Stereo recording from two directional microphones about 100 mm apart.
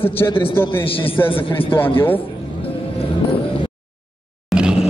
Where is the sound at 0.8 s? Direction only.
65° left (ahead or behind).